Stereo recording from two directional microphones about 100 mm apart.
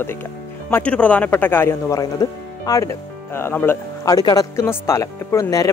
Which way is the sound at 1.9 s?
35° left (ahead or behind).